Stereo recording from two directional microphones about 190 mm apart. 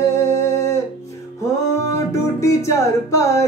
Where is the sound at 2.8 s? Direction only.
15° left (ahead or behind).